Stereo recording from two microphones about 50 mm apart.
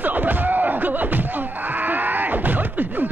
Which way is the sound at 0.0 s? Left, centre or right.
Right.